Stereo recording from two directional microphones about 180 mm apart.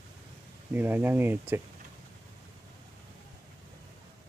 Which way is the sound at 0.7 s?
10° right (ahead or behind).